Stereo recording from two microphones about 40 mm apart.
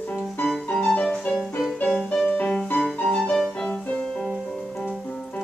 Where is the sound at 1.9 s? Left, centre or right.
Centre.